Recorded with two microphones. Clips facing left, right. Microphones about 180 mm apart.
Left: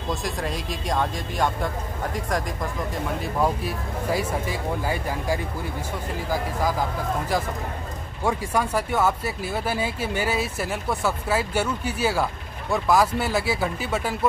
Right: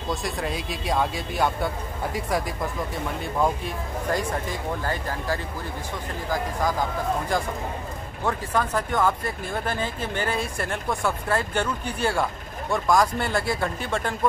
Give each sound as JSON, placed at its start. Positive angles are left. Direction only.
{"t": 0.1, "sound": "speech", "side_deg": 0}
{"t": 3.2, "sound": "speech", "side_deg": 5}
{"t": 8.2, "sound": "speech", "side_deg": 10}